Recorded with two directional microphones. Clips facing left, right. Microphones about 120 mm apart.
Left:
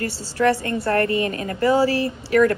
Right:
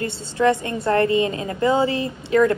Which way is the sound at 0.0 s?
20° right (ahead or behind).